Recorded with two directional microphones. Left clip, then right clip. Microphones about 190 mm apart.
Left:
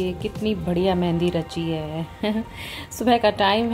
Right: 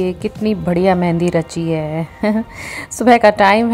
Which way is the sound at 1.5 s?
90° right.